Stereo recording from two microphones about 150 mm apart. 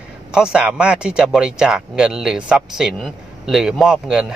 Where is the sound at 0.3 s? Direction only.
5° right (ahead or behind).